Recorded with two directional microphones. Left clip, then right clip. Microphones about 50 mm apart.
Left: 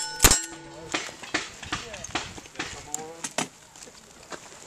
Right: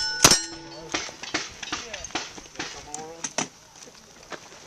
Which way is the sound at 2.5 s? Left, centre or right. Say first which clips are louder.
Even; centre.